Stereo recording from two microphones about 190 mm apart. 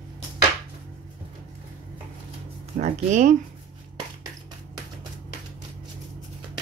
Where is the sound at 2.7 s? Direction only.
40° right (ahead or behind).